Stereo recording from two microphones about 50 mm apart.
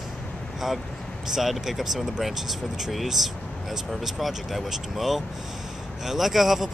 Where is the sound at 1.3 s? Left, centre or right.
Centre.